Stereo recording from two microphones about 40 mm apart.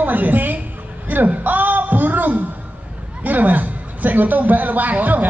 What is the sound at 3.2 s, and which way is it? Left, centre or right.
A woman's voice, right.